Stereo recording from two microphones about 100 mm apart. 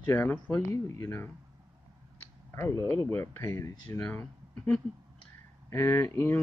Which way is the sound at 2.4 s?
30° left (ahead or behind).